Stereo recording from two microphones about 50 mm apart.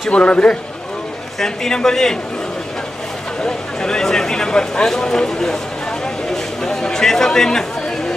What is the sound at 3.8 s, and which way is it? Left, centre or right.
Speech, centre.